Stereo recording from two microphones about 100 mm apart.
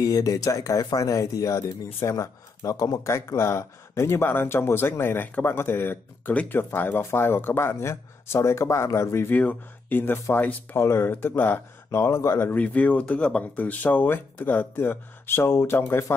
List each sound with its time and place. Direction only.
0.0 s speech: 35° left (ahead or behind)
12.4 s speech: 15° left (ahead or behind)